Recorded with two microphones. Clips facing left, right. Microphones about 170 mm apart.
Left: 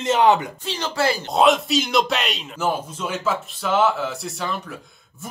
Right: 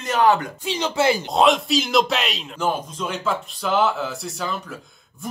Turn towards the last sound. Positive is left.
turn(degrees=0)  # may be behind; listen again after turning